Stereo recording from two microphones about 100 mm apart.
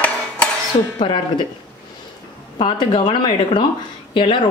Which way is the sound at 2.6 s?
55° left (ahead or behind).